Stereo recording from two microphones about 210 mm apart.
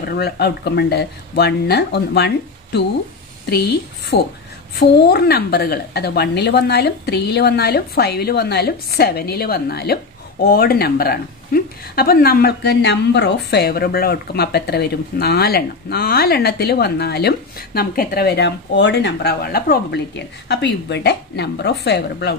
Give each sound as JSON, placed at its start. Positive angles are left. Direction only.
{"t": 0.0, "sound": "speech", "side_deg": 50}